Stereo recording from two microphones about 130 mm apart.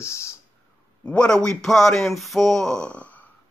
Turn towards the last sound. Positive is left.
turn(degrees=10)  # may be behind; listen again after turning